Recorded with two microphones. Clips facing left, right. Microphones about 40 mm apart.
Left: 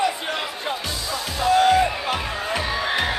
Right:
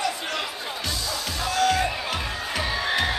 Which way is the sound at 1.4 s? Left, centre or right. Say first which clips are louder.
Left 6 dB; left.